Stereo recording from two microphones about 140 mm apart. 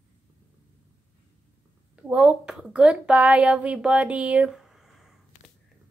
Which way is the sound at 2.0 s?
10° right (ahead or behind).